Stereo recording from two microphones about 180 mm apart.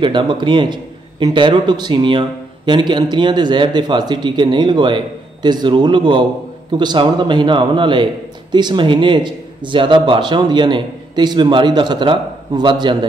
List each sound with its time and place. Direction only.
0.0 s a man's voice: 25° right (ahead or behind)